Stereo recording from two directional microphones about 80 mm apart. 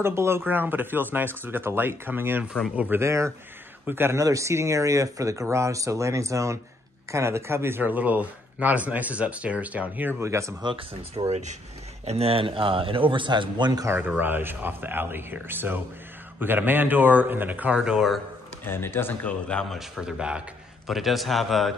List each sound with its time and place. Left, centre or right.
0.0 s speech: right
3.0 s speech: right
4.2 s speech: right
10.2 s speech: right
10.6 s a man's voice: right
12.4 s a man's voice: right
13.8 s speech: right; by 18.2 s centre
18.6 s a man's voice: left
20.0 s a man's voice: centre